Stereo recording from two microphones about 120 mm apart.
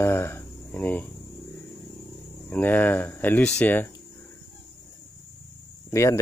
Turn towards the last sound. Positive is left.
turn(degrees=25)  # may be behind; listen again after turning